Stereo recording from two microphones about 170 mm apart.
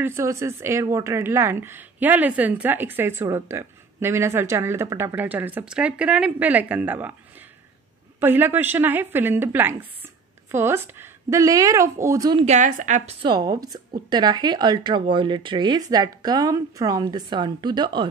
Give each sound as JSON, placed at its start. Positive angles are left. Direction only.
{"t": 0.0, "sound": "a woman's voice", "side_deg": -15}
{"t": 8.2, "sound": "a woman's voice", "side_deg": -10}
{"t": 12.4, "sound": "a woman's voice", "side_deg": -45}
{"t": 13.2, "sound": "a woman's voice", "side_deg": -25}